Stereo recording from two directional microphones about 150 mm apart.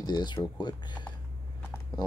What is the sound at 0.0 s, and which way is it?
Speech, 30° left (ahead or behind).